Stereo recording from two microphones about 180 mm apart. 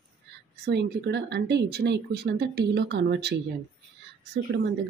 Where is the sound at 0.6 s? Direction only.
70° right (ahead or behind).